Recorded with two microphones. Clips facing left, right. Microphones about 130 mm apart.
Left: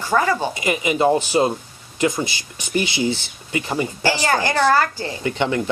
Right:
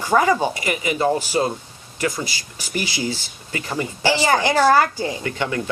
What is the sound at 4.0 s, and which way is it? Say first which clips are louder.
A woman's voice: right 3 dB; 15° right (ahead or behind).